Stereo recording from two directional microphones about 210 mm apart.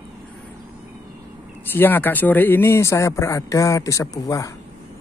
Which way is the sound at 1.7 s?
10° left (ahead or behind).